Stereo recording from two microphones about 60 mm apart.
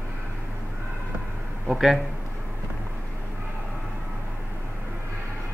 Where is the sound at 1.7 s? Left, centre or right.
Centre.